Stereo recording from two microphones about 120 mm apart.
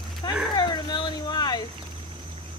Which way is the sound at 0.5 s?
35° left (ahead or behind).